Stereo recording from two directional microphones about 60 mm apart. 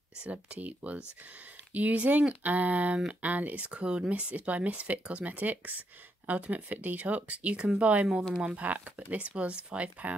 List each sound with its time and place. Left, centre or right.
0.2 s speech: right